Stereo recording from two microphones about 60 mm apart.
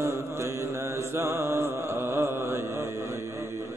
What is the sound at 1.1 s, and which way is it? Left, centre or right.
Mantra, right.